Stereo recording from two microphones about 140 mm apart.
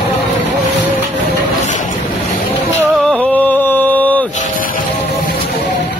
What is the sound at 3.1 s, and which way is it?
Mantra, 10° left (ahead or behind).